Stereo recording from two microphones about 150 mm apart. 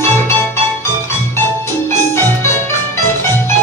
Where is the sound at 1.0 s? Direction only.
15° left (ahead or behind).